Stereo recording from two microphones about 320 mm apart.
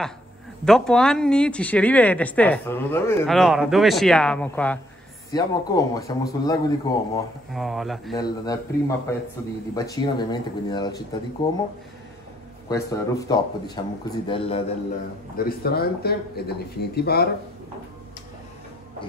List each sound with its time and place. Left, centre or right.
0.7 s speech: centre
7.5 s speech: centre
8.2 s speech: centre
12.6 s speech: centre
15.3 s speech: left